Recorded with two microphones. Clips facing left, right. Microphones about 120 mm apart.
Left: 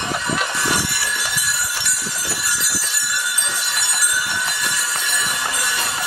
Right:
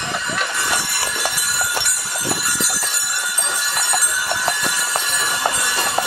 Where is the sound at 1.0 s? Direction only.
45° right (ahead or behind).